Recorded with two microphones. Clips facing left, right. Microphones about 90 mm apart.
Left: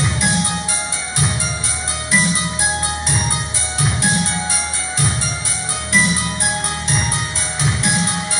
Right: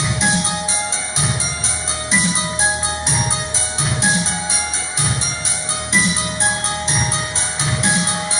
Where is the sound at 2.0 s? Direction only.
25° right (ahead or behind).